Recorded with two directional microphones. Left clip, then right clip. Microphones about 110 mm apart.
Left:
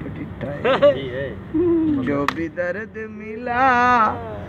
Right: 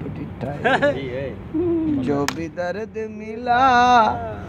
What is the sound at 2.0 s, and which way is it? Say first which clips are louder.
Speech: left 1 dB; 60° right (ahead or behind).